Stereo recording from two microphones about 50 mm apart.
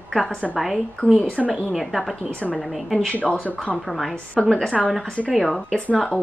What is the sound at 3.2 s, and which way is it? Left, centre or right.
Speech, left.